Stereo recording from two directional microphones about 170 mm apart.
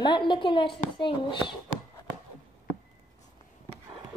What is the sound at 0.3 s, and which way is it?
Speech, 30° left (ahead or behind).